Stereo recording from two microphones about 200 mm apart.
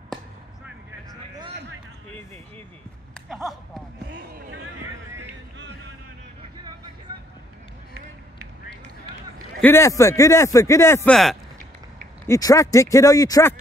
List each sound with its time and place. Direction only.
9.6 s a man's voice: 10° left (ahead or behind)
11.1 s speech: centre (ahead or behind)
12.3 s a man's voice: 15° left (ahead or behind)